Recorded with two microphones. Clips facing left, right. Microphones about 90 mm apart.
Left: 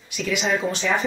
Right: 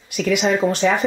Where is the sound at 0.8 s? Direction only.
45° right (ahead or behind).